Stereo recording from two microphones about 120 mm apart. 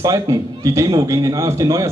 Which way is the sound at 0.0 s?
30° right (ahead or behind).